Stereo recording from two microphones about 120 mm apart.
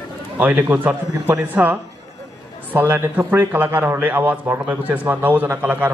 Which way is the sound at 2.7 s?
20° right (ahead or behind).